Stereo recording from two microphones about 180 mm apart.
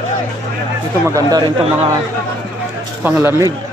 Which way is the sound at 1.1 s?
20° right (ahead or behind).